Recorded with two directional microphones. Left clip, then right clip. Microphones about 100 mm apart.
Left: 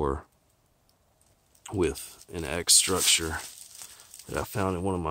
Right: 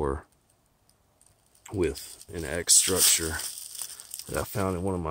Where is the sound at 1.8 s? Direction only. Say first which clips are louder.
Even; 15° left (ahead or behind).